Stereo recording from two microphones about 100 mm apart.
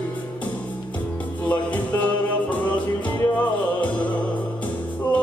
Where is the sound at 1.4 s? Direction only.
15° left (ahead or behind).